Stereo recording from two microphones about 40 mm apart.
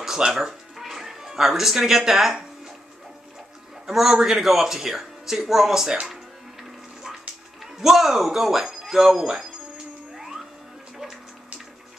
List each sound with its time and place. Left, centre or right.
0.0 s music: centre
3.8 s speech: centre
7.6 s speech: centre
10.1 s music: centre